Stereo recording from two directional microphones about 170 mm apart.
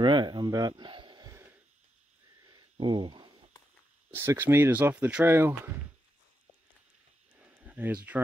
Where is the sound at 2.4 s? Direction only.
25° right (ahead or behind).